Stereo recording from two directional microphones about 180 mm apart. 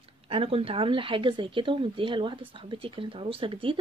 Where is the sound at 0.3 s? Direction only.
30° right (ahead or behind).